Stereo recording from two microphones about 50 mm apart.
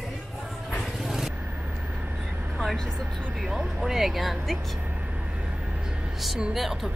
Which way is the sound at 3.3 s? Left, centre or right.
Centre.